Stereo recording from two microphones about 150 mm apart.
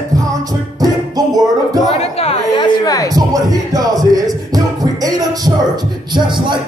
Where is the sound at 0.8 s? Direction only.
25° right (ahead or behind).